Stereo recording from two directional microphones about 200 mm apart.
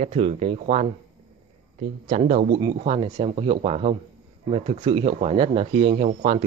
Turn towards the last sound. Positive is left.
turn(degrees=-30)  # may be behind; listen again after turning